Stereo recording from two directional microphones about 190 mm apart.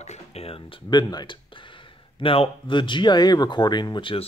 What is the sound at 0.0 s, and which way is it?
Speech, 35° left (ahead or behind).